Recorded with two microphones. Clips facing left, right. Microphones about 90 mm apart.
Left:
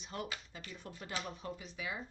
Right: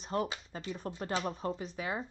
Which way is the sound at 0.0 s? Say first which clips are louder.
Right 9 dB; 40° right (ahead or behind).